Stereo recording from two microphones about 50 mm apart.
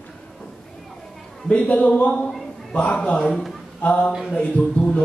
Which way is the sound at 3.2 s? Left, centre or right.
Centre.